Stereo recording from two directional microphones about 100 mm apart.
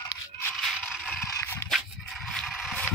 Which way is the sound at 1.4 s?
25° left (ahead or behind).